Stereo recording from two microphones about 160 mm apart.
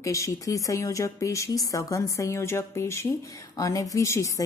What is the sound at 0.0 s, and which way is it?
A woman's voice, 20° left (ahead or behind).